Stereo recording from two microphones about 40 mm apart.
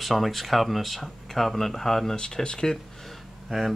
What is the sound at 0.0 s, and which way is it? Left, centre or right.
Speech, centre.